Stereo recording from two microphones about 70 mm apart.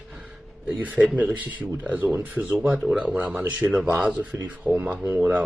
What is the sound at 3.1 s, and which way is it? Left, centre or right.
Speech, right.